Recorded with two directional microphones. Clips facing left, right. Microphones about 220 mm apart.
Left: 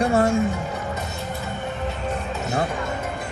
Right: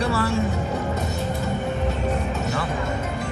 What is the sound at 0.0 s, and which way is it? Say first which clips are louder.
Speech: left 4 dB; 35° right (ahead or behind).